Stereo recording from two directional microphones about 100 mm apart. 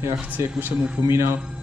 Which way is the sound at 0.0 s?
20° right (ahead or behind).